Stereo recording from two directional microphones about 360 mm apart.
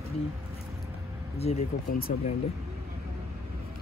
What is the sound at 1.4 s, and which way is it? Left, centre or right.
Speech, left.